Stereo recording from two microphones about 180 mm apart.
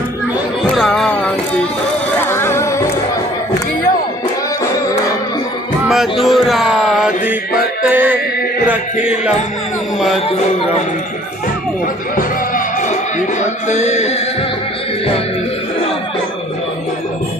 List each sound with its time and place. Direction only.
0.7 s music: centre (ahead or behind)
2.1 s music: 15° left (ahead or behind)
5.9 s music: centre (ahead or behind)
9.9 s speech: centre (ahead or behind)
12.2 s music: 50° left (ahead or behind)
13.7 s a sound: 40° left (ahead or behind)